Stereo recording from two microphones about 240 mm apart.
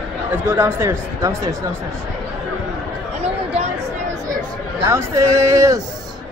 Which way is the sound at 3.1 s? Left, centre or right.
Right.